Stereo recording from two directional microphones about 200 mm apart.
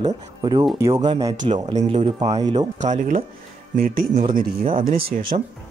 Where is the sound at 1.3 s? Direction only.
40° right (ahead or behind); by 2.7 s 20° right (ahead or behind).